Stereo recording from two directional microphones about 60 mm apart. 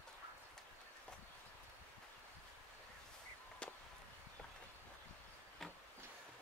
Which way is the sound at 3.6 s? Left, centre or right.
Centre.